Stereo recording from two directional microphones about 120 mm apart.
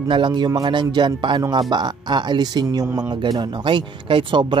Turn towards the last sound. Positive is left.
turn(degrees=-40)  # may be behind; listen again after turning